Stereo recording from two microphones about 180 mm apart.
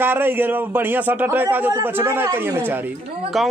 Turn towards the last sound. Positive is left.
turn(degrees=0)  # may be behind; listen again after turning